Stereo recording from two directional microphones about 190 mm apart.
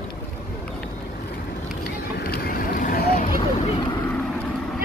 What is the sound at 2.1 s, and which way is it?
Vehicle, 55° left (ahead or behind).